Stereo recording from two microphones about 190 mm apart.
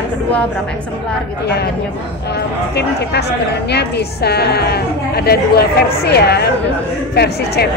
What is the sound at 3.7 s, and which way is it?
A woman's voice, 60° left (ahead or behind).